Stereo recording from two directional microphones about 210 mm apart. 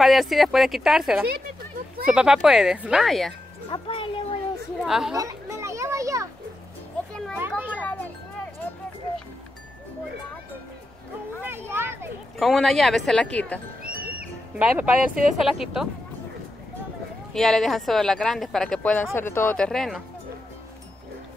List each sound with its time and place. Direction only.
0.0 s speech: centre (ahead or behind)
3.7 s music: 25° left (ahead or behind)
4.8 s speech: centre (ahead or behind)
5.1 s children playing: 15° right (ahead or behind)
7.3 s children playing: 10° right (ahead or behind)
7.8 s children playing: 10° left (ahead or behind)
11.4 s children playing: 10° right (ahead or behind)
12.4 s speech: centre (ahead or behind)
14.6 s speech: 5° right (ahead or behind)
17.3 s speech: centre (ahead or behind)